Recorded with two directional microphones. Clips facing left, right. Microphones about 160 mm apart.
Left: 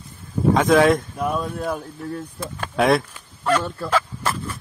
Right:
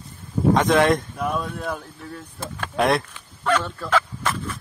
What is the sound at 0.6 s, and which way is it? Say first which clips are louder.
Speech: left 4 dB; centre (ahead or behind).